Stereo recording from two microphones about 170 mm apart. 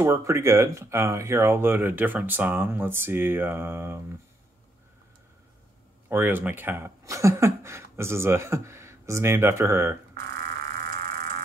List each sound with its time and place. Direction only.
0.0 s speech: 15° right (ahead or behind)
6.0 s speech: 10° right (ahead or behind)
10.6 s a sound: 60° right (ahead or behind)